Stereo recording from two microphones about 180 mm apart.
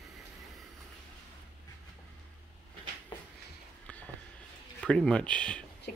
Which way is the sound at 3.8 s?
10° left (ahead or behind).